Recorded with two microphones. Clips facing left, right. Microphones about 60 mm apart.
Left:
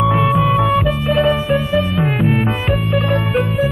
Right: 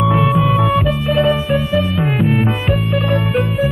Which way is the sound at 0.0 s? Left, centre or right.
Centre.